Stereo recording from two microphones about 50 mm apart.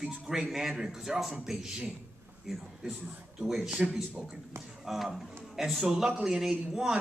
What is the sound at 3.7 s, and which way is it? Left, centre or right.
Speech, right.